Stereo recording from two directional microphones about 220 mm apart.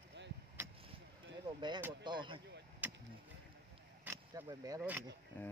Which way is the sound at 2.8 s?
10° right (ahead or behind).